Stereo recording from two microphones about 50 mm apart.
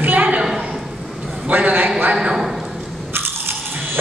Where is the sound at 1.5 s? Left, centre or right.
Right.